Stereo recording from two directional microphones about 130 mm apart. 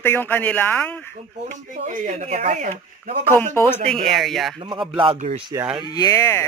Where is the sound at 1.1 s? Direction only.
75° right (ahead or behind).